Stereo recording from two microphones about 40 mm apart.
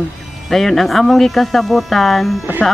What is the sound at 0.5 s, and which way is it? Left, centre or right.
Speech, centre.